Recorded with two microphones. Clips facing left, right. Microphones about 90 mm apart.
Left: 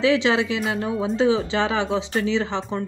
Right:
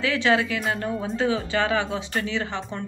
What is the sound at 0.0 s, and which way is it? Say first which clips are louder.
Speech: left 3 dB; 20° left (ahead or behind).